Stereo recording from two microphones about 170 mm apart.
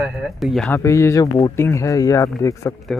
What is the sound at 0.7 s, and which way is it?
Speech, 15° left (ahead or behind).